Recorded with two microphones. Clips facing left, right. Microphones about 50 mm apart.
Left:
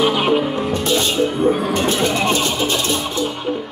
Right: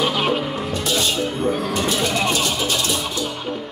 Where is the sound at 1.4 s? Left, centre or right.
Centre.